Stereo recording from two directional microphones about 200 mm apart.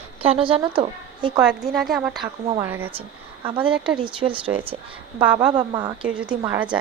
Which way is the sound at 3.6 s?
5° right (ahead or behind).